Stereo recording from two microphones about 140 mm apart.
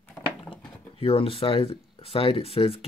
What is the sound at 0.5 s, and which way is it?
Speech, 40° left (ahead or behind).